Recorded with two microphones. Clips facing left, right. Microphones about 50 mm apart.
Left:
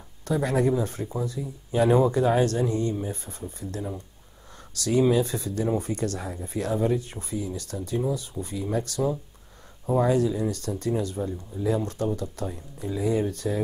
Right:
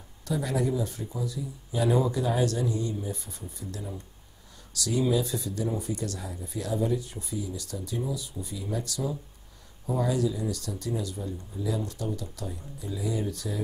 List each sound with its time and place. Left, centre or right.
0.2 s speech: left